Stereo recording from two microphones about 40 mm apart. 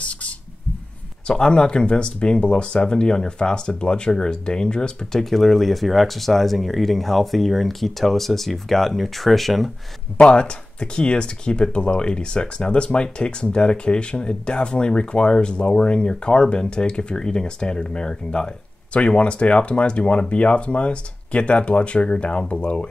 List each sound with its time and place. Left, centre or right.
0.0 s a sound: left
1.2 s speech: left
5.2 s speech: centre
10.3 s speech: left